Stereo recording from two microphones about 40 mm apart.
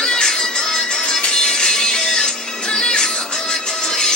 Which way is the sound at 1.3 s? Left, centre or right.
Left.